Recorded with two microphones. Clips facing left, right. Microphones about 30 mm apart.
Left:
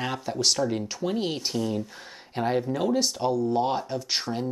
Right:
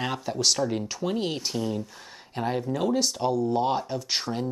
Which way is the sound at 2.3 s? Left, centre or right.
Centre.